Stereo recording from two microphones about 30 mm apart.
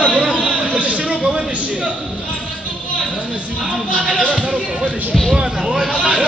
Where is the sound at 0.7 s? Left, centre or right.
Right.